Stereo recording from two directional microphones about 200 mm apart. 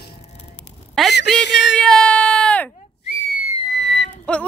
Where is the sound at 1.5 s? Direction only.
60° left (ahead or behind).